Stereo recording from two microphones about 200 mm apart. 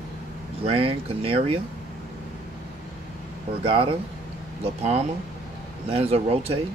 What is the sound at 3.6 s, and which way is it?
Speech, 25° right (ahead or behind).